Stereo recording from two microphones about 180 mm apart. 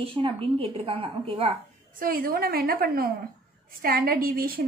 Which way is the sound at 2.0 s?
55° right (ahead or behind).